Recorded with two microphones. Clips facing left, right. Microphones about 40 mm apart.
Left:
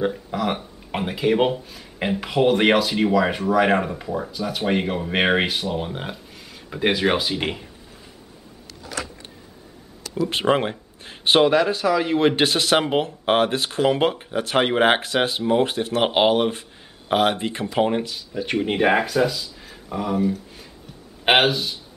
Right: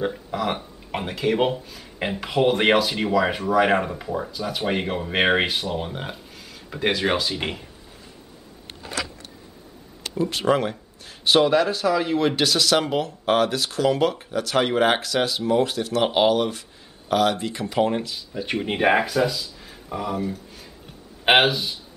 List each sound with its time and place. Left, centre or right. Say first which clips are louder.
0.0 s speech: left 2 dB; centre
9.0 s a sound: right 3 dB; right
10.3 s speech: left 2 dB; left
17.8 s speech: left 2 dB; centre
18.1 s speech: left 3 dB; centre